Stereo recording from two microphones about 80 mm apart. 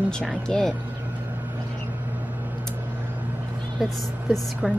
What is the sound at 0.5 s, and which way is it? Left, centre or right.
Speech, centre.